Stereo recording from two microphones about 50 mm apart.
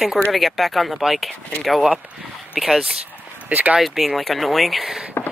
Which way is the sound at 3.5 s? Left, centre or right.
Right.